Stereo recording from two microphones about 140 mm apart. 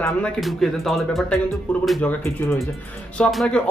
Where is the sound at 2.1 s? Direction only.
20° left (ahead or behind).